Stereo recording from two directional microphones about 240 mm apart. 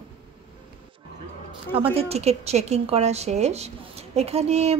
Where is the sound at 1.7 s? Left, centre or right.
Right.